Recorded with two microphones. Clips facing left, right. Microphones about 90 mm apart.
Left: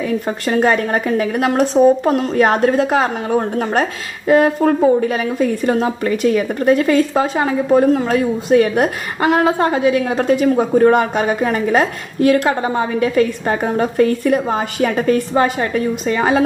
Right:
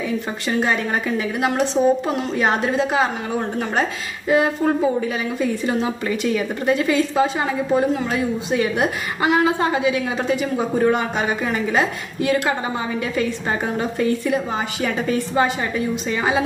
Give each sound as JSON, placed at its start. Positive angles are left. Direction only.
{"t": 0.5, "sound": "a woman's voice", "side_deg": 55}